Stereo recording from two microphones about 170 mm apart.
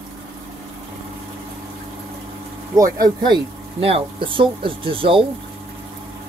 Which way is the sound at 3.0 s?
25° right (ahead or behind).